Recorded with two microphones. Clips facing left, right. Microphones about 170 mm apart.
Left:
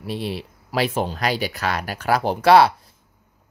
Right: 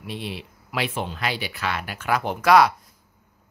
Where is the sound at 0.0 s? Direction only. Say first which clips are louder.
Left 5 dB; 40° left (ahead or behind).